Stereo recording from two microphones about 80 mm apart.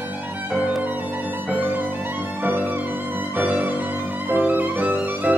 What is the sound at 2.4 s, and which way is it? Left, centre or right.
Music, right.